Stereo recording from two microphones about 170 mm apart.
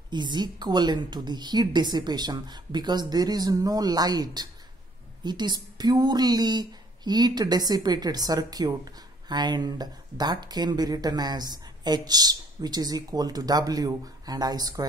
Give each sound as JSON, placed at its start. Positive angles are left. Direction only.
{"t": 0.1, "sound": "speech", "side_deg": -25}